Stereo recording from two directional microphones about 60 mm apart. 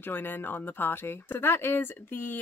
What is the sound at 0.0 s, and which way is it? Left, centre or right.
A woman's voice, left.